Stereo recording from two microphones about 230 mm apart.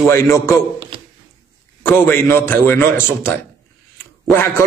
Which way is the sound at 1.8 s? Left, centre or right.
Centre.